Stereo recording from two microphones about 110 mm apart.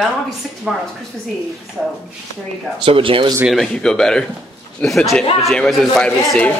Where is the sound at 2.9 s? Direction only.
55° right (ahead or behind).